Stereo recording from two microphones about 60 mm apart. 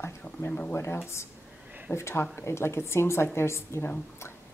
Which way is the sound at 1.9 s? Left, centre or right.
Left.